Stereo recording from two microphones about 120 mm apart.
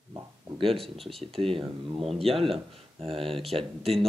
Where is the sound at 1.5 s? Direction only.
50° right (ahead or behind).